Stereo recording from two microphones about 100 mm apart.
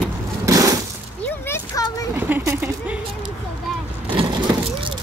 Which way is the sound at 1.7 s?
35° left (ahead or behind).